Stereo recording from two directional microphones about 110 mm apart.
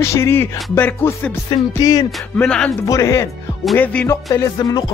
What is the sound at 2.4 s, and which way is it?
Music, 10° left (ahead or behind).